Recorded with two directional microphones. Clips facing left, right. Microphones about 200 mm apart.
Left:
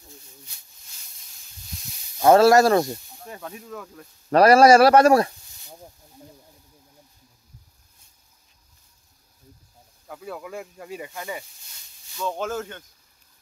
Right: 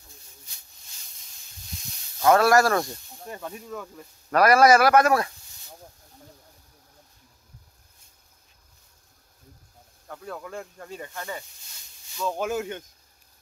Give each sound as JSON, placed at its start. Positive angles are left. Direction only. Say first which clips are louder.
{"t": 2.2, "sound": "a man's voice", "louder": "left 4 dB", "side_deg": 25}
{"t": 3.3, "sound": "speech", "louder": "right 1 dB", "side_deg": 0}
{"t": 4.3, "sound": "a man's voice", "louder": "left 4 dB", "side_deg": 30}
{"t": 10.0, "sound": "speech", "louder": "left 2 dB", "side_deg": 5}
{"t": 12.2, "sound": "speech", "louder": "right 1 dB", "side_deg": -10}